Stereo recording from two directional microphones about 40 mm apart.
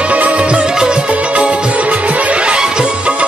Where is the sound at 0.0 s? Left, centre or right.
Right.